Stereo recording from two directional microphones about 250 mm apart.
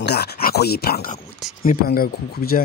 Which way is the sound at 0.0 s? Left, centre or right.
Left.